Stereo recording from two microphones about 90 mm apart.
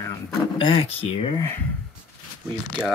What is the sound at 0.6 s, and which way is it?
Speech, 85° left.